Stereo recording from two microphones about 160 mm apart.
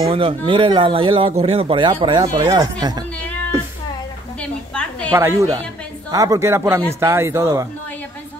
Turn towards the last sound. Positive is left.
turn(degrees=-15)  # may be behind; listen again after turning